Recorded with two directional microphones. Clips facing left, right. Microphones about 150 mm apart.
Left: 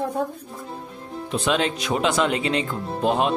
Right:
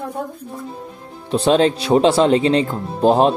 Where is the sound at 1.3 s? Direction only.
35° right (ahead or behind).